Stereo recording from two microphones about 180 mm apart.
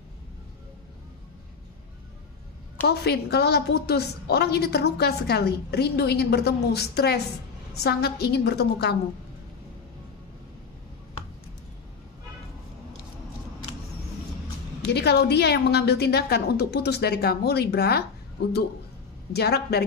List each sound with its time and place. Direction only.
2.9 s a woman's voice: 65° left (ahead or behind)
14.9 s a woman's voice: 65° left (ahead or behind)
19.3 s a woman's voice: 65° left (ahead or behind)